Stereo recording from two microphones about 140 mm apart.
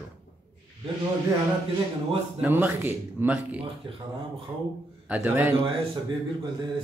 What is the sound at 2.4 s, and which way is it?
Speech, 10° right (ahead or behind).